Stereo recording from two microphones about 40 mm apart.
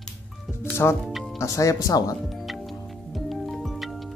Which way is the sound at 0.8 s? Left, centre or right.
Left.